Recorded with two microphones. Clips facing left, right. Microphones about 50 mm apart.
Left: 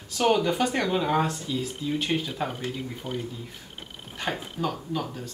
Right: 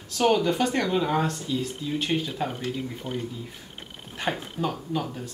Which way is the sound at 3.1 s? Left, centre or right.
Right.